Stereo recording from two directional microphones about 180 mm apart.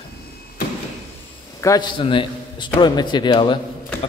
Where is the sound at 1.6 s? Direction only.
20° left (ahead or behind).